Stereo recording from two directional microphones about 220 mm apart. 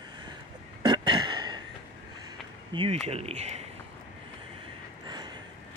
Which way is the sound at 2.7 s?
20° right (ahead or behind).